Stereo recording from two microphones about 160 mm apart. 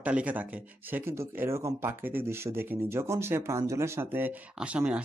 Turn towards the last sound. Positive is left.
turn(degrees=-5)  # may be behind; listen again after turning